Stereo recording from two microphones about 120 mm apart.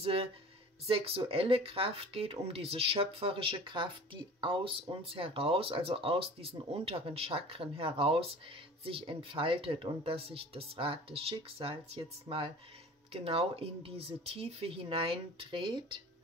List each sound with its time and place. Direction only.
0.0 s speech: 50° right (ahead or behind)